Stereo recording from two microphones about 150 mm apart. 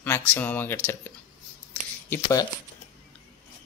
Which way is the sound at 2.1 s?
20° left (ahead or behind).